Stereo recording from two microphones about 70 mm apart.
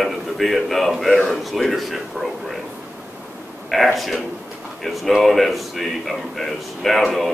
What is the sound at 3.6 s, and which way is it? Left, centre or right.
A man's voice, centre.